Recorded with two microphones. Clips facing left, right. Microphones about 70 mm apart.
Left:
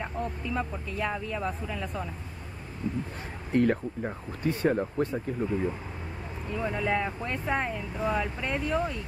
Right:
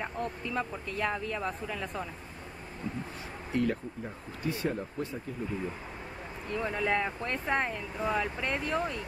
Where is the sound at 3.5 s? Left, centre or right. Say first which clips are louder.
Left 6 dB; left.